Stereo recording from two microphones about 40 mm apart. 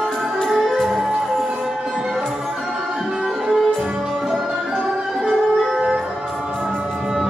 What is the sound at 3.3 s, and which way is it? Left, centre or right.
Music, centre.